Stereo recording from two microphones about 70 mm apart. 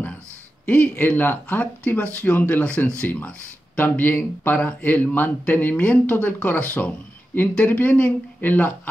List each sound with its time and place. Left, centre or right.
0.7 s speech: left